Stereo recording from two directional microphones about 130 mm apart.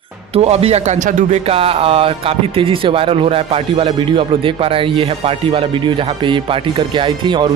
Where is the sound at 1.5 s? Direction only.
45° right (ahead or behind).